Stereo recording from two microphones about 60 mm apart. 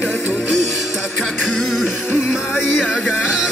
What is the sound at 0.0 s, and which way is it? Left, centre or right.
Music, left.